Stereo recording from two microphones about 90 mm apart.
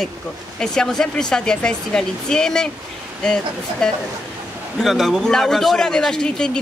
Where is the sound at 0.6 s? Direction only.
5° left (ahead or behind).